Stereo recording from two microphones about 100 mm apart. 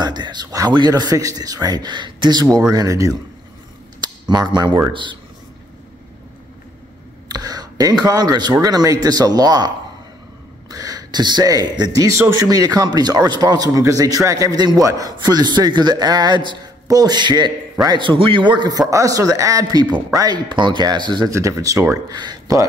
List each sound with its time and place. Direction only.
0.0 s speech: 45° right (ahead or behind)
4.0 s a sound: 45° right (ahead or behind)
7.2 s a sound: 40° right (ahead or behind)
8.5 s speech: 35° right (ahead or behind)
10.7 s a man's voice: 40° right (ahead or behind)
21.3 s speech: 30° right (ahead or behind)
22.1 s a man's voice: 45° right (ahead or behind)